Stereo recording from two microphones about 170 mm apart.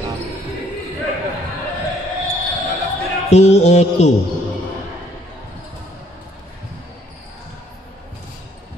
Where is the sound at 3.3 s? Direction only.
40° left (ahead or behind).